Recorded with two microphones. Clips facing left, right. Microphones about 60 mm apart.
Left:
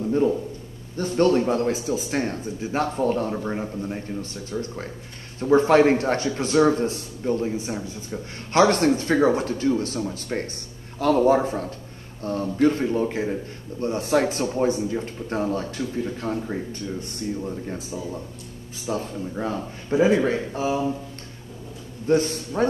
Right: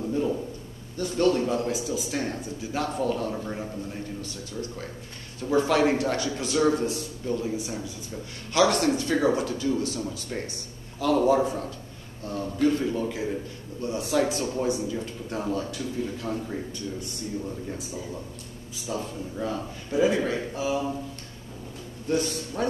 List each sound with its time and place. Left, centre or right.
0.9 s a man's voice: left
18.9 s a man's voice: left
22.0 s a man's voice: left